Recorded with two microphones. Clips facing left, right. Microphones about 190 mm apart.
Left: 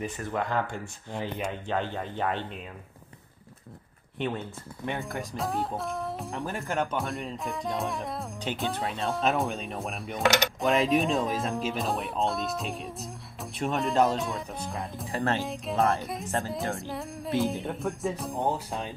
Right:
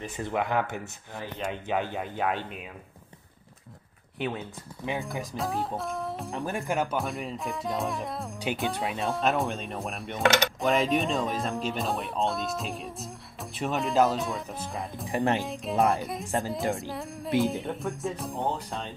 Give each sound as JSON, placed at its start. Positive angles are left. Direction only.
{"t": 0.2, "sound": "speech", "side_deg": -15}
{"t": 1.1, "sound": "speech", "side_deg": 20}
{"t": 1.5, "sound": "speech", "side_deg": -10}
{"t": 4.2, "sound": "speech", "side_deg": -5}
{"t": 6.3, "sound": "speech", "side_deg": -15}
{"t": 8.6, "sound": "speech", "side_deg": -10}
{"t": 9.0, "sound": "speech", "side_deg": 0}
{"t": 15.0, "sound": "speech", "side_deg": -15}
{"t": 15.4, "sound": "speech", "side_deg": 0}
{"t": 16.9, "sound": "music", "side_deg": 0}
{"t": 17.4, "sound": "speech", "side_deg": 0}